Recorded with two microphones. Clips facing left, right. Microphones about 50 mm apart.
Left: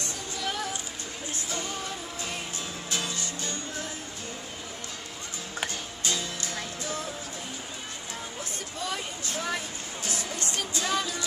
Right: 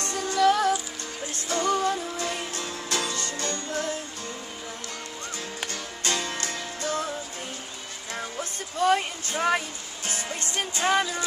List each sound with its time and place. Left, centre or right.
0.0 s music: right
5.7 s music: right
8.7 s a sound: right
10.0 s music: right